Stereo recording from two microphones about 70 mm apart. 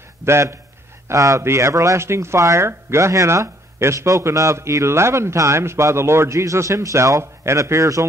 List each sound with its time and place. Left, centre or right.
0.2 s a man's voice: right
1.0 s speech: right